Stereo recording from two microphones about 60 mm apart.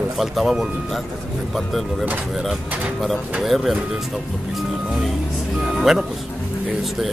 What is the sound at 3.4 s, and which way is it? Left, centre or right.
Speech, centre.